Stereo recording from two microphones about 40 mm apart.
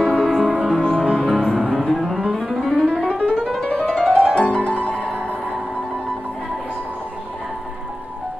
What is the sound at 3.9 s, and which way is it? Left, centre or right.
Music, centre.